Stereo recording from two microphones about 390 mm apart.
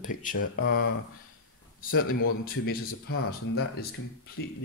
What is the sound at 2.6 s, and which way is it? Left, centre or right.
Speech, left.